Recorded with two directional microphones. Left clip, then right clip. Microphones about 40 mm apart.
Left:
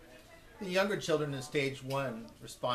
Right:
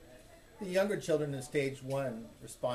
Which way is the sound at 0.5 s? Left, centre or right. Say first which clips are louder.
Even; centre.